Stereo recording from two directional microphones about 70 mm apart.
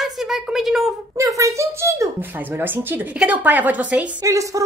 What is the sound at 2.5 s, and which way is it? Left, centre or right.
Speech, right.